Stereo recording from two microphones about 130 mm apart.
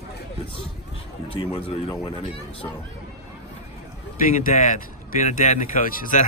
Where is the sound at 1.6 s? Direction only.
45° left (ahead or behind).